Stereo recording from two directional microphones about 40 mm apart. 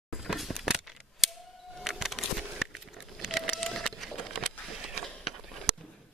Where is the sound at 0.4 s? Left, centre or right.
Centre.